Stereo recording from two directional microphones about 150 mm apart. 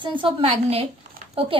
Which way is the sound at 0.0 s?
35° right (ahead or behind).